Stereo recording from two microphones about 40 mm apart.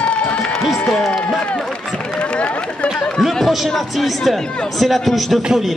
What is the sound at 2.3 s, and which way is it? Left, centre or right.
Chatter, left.